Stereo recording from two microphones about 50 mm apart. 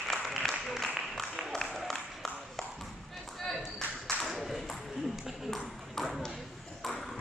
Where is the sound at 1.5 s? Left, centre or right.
Centre.